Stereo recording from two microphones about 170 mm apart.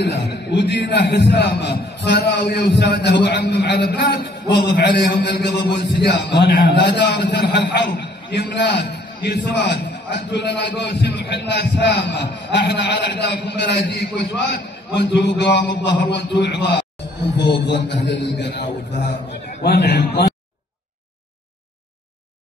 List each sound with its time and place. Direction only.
0.0 s a man's voice: 70° left (ahead or behind); by 18.9 s 90° left
19.6 s a man's voice: 70° left (ahead or behind)